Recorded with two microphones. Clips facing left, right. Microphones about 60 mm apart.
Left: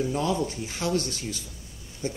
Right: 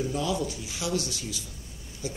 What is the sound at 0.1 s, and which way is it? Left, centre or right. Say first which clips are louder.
Speech: left 2 dB; left.